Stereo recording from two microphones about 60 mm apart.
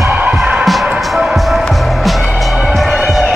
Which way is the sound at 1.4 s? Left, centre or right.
Centre.